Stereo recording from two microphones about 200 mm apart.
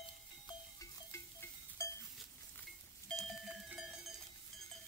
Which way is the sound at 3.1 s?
Centre (ahead or behind).